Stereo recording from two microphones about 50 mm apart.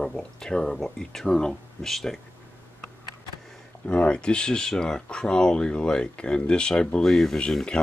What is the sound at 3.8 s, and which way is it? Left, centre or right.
Speech, left.